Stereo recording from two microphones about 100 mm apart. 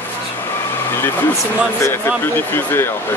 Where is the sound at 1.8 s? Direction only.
25° left (ahead or behind).